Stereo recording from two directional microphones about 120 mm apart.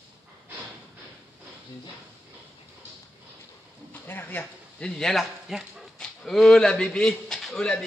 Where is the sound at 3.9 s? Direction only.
15° left (ahead or behind); by 5.8 s 5° right (ahead or behind).